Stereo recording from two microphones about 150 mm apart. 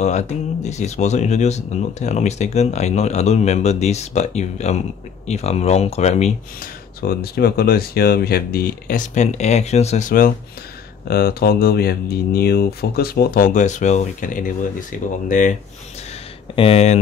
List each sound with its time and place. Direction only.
0.0 s speech: 50° left (ahead or behind)
7.0 s speech: 90° left; by 10.3 s 65° left (ahead or behind)
11.1 s speech: 90° left; by 15.5 s 60° left (ahead or behind)
16.5 s speech: 40° left (ahead or behind)